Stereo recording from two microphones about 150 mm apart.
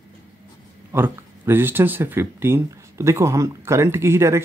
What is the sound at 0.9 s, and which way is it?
Speech, 15° right (ahead or behind).